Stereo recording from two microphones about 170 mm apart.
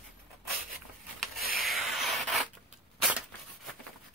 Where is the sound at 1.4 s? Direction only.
60° right (ahead or behind).